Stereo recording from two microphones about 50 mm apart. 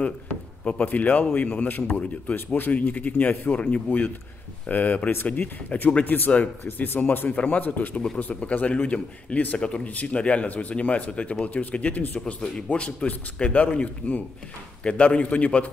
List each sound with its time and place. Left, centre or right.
0.8 s speech: left